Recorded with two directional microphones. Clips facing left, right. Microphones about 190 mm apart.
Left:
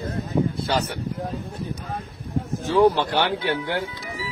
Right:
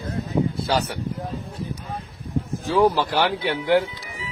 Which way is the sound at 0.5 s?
Centre (ahead or behind).